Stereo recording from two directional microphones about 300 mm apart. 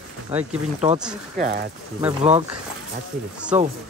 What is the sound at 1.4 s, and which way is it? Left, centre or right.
Speech, right.